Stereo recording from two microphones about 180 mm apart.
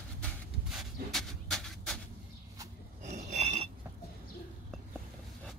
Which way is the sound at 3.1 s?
40° right (ahead or behind).